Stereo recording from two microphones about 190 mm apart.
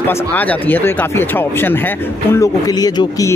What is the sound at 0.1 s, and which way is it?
Speech, 10° left (ahead or behind).